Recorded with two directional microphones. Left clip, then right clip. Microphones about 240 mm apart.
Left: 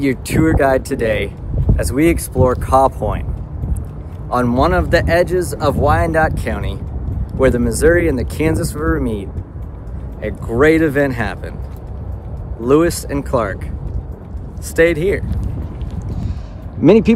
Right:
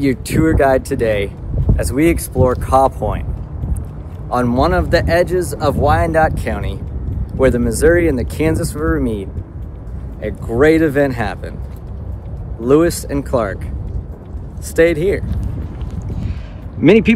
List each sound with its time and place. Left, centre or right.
0.0 s speech: centre
4.3 s speech: centre
12.6 s speech: centre
14.8 s speech: centre
16.8 s speech: left